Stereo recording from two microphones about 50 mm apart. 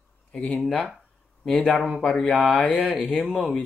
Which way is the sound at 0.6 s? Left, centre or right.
Centre.